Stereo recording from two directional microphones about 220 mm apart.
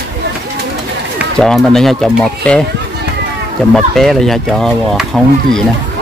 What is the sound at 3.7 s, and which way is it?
Speech, centre (ahead or behind).